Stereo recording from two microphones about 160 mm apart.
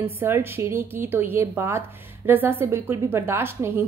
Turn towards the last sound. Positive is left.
turn(degrees=-15)  # may be behind; listen again after turning